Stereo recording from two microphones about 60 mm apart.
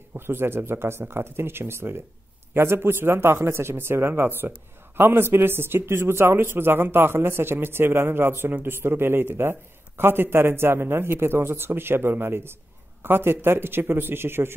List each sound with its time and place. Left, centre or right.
0.1 s a man's voice: right